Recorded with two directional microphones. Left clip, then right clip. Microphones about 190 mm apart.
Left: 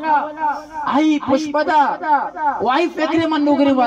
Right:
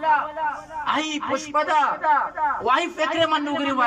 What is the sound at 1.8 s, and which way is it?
Music, 55° left (ahead or behind).